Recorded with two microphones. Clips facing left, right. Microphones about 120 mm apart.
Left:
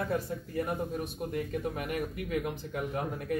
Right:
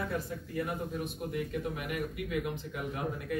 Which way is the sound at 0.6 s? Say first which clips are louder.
Left 2 dB; 40° left (ahead or behind).